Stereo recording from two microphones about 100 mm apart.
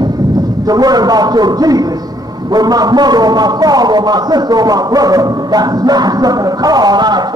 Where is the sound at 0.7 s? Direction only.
40° right (ahead or behind).